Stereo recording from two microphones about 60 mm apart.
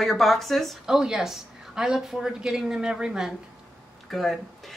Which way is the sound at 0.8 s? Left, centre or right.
Centre.